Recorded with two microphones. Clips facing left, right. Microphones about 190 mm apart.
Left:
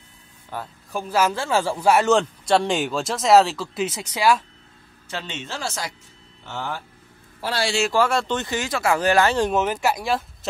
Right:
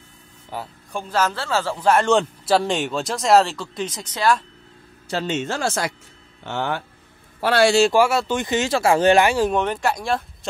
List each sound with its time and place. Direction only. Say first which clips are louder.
0.5 s speech: right 1 dB; 10° right (ahead or behind)
0.9 s speech: left 1 dB; 10° left (ahead or behind)
5.2 s speech: right 9 dB; 50° right (ahead or behind)
6.4 s speech: right 5 dB; 70° right (ahead or behind)
7.9 s speech: right 3 dB; 10° right (ahead or behind)
8.5 s speech: right 4 dB; 25° right (ahead or behind)
9.2 s speech: right 1 dB; 10° right (ahead or behind)
9.5 s speech: even; 5° left (ahead or behind)